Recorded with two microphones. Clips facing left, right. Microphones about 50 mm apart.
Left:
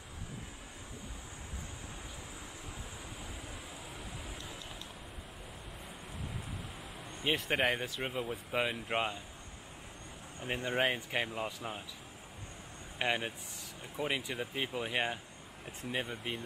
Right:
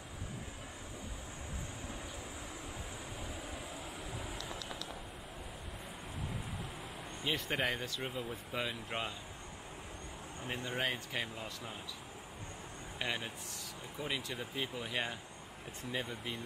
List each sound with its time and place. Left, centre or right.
7.5 s speech: left
10.4 s speech: left
13.0 s speech: left